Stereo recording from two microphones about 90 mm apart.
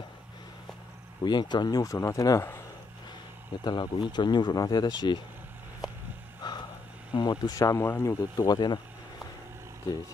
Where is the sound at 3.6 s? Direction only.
55° left (ahead or behind).